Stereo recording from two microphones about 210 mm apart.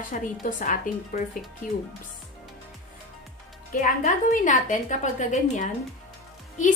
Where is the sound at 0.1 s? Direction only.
40° left (ahead or behind).